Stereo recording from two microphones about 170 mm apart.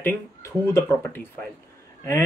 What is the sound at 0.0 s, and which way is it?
Speech, 15° left (ahead or behind).